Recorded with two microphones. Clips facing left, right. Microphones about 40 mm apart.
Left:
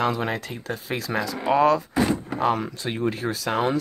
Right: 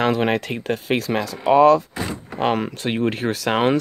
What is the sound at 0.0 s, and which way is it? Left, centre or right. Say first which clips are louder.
Speech: right 5 dB; right.